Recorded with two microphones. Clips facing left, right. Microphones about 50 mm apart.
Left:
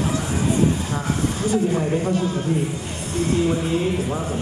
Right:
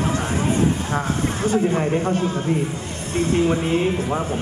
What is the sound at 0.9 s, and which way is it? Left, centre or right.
Speech, right.